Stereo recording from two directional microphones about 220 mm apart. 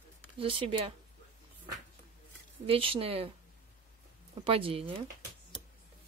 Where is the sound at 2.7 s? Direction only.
25° right (ahead or behind).